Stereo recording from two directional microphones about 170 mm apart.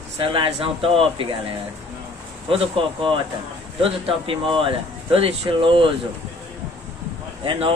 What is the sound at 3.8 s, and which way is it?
A man's voice, 35° right (ahead or behind).